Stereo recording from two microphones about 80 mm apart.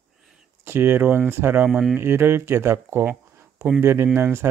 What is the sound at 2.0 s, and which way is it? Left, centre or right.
Speech, right.